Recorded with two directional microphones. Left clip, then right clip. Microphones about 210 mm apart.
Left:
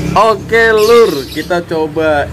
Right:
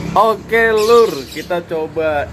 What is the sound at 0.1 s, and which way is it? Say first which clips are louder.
Speech: left 3 dB; 5° right (ahead or behind).